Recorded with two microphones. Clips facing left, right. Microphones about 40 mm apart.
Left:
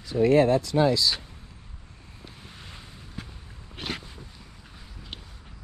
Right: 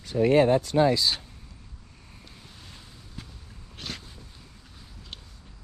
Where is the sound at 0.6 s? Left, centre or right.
Right.